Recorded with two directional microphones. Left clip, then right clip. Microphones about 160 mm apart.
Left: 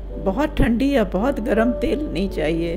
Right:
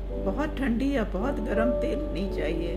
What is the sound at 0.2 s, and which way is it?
Speech, 50° left (ahead or behind).